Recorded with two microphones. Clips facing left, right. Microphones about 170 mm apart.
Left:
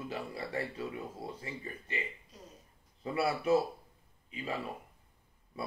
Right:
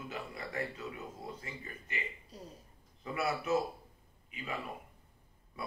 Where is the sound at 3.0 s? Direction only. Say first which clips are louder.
Left 3 dB; 30° left (ahead or behind).